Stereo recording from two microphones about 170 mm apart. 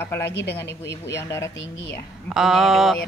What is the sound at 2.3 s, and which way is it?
Speech, centre (ahead or behind).